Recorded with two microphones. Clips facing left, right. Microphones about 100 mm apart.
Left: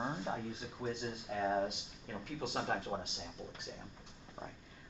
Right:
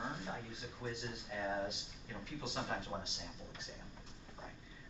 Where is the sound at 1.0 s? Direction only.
45° left (ahead or behind).